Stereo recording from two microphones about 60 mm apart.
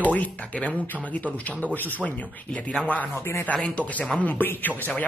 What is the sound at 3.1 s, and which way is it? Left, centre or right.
Speech, left.